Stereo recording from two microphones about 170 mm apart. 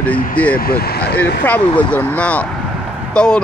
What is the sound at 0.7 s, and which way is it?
Speech, 65° left (ahead or behind).